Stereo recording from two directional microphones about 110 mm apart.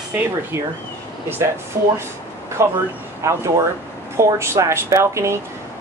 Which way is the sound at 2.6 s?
25° right (ahead or behind).